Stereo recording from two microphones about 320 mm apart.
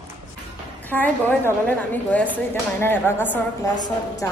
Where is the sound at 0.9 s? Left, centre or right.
Centre.